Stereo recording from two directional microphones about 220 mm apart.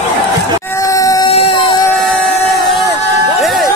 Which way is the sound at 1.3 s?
25° left (ahead or behind).